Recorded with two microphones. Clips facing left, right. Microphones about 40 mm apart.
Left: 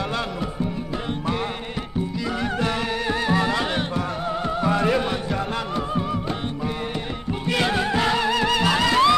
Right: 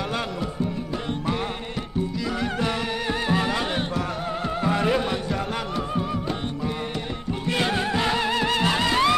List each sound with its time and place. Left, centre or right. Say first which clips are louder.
2.4 s music: left 2 dB; centre
7.4 s music: left 2 dB; centre
8.2 s music: left 2 dB; centre